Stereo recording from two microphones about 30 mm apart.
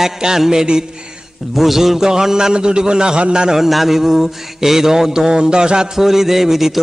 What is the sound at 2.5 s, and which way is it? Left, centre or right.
Music, right.